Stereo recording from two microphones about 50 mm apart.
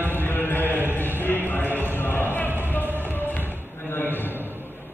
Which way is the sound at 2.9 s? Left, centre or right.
Right.